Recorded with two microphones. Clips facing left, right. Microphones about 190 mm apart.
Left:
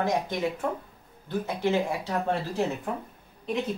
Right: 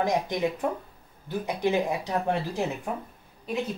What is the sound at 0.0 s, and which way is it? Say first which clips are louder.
Speech: right 1 dB; 15° right (ahead or behind).